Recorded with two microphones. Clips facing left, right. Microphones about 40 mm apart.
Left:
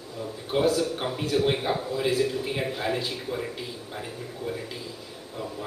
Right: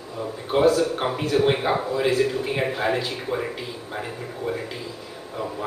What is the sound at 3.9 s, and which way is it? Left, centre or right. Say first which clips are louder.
Speech: right 5 dB; right.